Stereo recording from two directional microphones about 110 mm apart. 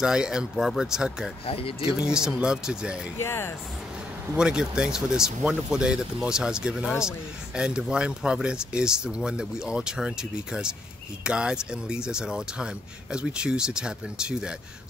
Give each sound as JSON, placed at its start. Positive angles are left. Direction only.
{"t": 0.0, "sound": "speech", "side_deg": -5}
{"t": 1.4, "sound": "speech", "side_deg": 55}
{"t": 1.9, "sound": "speech", "side_deg": -5}
{"t": 3.2, "sound": "speech", "side_deg": 20}
{"t": 4.4, "sound": "speech", "side_deg": -10}